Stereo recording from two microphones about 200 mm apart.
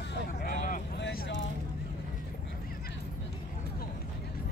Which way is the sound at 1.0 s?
55° left (ahead or behind).